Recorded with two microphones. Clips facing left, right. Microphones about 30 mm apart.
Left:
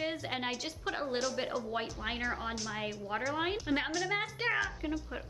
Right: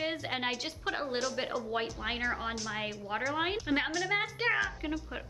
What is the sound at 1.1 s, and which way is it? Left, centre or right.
Speech, centre.